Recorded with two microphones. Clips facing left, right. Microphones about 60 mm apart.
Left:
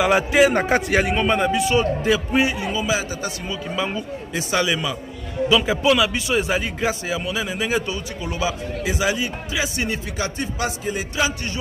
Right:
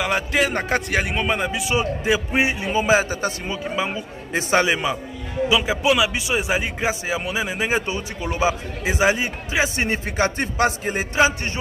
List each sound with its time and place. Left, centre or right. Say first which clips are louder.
0.0 s a man's voice: left 5 dB; centre; by 3.5 s right
3.7 s a man's voice: left 1 dB; centre
4.3 s speech: right 3 dB; right
5.5 s a man's voice: left 2 dB; centre; by 11.5 s right